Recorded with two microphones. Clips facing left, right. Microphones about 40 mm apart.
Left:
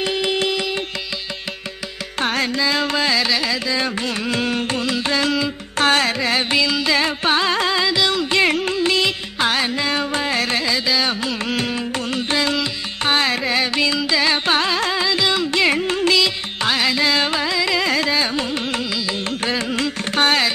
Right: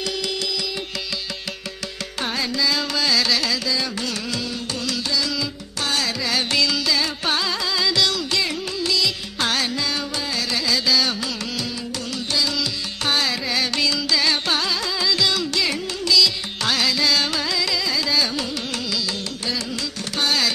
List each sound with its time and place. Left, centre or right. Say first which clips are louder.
0.0 s carnatic music: left 6 dB; left
2.1 s carnatic music: left 5 dB; left
3.2 s carnatic music: left 2 dB; centre
3.7 s carnatic music: left 4 dB; left
6.5 s carnatic music: left 3 dB; left
6.9 s carnatic music: left 5 dB; left
7.8 s carnatic music: left 3 dB; left
8.4 s carnatic music: left 7 dB; left
9.4 s music: left 3 dB; left
10.7 s carnatic music: left 1 dB; left
15.6 s carnatic music: left 7 dB; left
16.6 s carnatic music: left 3 dB; left
17.7 s carnatic music: left 4 dB; left